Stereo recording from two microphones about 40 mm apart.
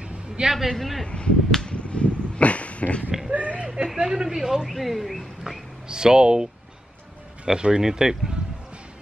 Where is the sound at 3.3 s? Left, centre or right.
Right.